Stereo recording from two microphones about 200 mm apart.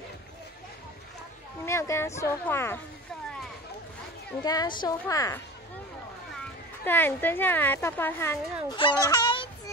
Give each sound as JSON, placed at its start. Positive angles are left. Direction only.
{"t": 1.7, "sound": "speech", "side_deg": 15}
{"t": 4.4, "sound": "a woman's voice", "side_deg": 20}
{"t": 6.8, "sound": "speech", "side_deg": 10}
{"t": 8.7, "sound": "speech", "side_deg": 20}